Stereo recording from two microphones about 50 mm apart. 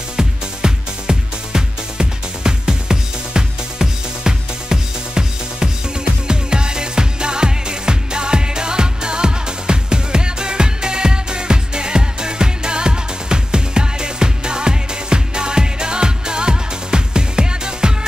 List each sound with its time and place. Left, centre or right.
0.2 s music: centre